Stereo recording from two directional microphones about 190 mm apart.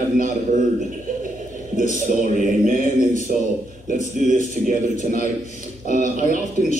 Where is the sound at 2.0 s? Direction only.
45° right (ahead or behind).